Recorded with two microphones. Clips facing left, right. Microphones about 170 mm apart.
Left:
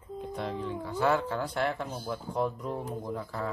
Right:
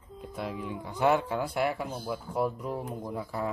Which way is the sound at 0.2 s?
5° right (ahead or behind).